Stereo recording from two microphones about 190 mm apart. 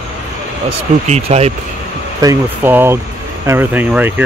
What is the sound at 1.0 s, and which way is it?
Speech, 35° right (ahead or behind).